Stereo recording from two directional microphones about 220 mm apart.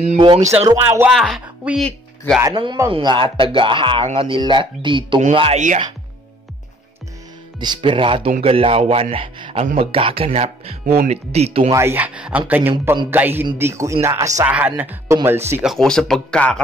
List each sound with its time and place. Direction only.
0.0 s speech: 25° right (ahead or behind)
0.7 s speech: 10° right (ahead or behind)
1.1 s a woman's voice: centre (ahead or behind)
2.4 s speech: 20° right (ahead or behind)
7.6 s speech: 20° right (ahead or behind)
11.7 s speech: 10° right (ahead or behind)